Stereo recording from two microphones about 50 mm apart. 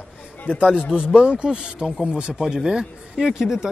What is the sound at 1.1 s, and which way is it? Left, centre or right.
Speech, right.